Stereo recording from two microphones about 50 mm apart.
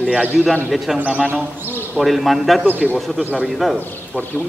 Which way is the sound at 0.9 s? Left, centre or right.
Right.